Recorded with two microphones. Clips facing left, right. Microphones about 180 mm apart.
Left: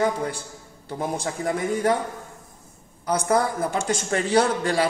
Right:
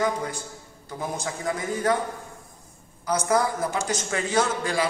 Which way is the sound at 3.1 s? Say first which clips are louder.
Left 1 dB; 30° left (ahead or behind).